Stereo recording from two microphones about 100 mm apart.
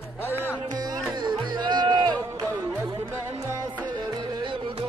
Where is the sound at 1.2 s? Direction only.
50° right (ahead or behind).